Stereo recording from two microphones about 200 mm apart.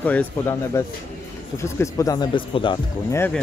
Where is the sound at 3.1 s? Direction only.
10° left (ahead or behind).